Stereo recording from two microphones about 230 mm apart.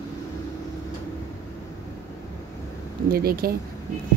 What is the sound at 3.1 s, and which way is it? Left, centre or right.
Speech, right.